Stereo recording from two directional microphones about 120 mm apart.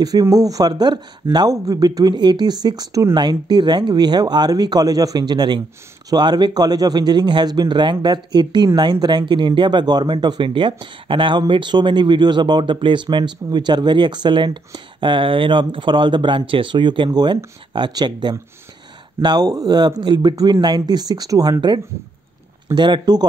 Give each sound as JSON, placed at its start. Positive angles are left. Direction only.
{"t": 0.0, "sound": "speech", "side_deg": -30}
{"t": 3.2, "sound": "speech", "side_deg": -40}